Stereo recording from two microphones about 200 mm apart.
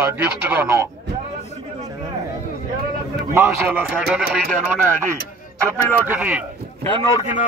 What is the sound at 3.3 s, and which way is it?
Speech, 15° right (ahead or behind).